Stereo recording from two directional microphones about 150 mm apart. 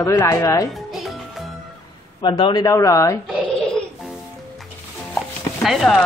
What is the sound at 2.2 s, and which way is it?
Speech, 30° left (ahead or behind).